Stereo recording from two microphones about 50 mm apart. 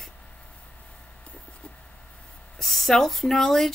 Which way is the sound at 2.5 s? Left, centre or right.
Centre.